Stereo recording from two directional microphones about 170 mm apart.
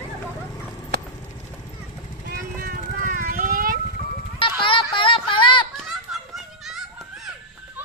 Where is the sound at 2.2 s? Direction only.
60° right (ahead or behind).